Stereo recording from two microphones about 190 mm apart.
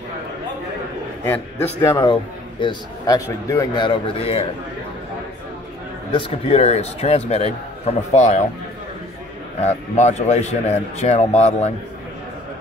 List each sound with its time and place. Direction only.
1.2 s a man's voice: 10° left (ahead or behind); by 4.5 s 30° left (ahead or behind)
6.1 s a man's voice: 30° left (ahead or behind)
9.6 s a man's voice: 35° left (ahead or behind)